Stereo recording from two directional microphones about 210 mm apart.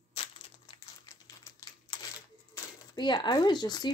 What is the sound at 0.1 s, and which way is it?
Crumpling, 20° left (ahead or behind).